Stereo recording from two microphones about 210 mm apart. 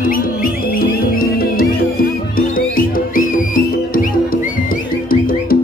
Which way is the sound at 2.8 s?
40° left (ahead or behind).